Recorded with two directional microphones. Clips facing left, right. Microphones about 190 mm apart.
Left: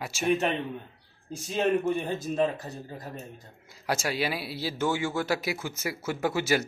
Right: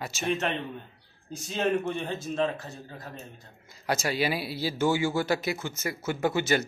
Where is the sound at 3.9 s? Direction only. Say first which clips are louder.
Right 1 dB; centre (ahead or behind).